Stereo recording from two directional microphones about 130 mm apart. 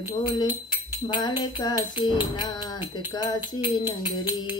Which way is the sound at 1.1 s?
35° left (ahead or behind).